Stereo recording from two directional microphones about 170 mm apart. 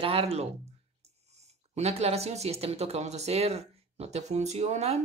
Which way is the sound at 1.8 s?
40° right (ahead or behind).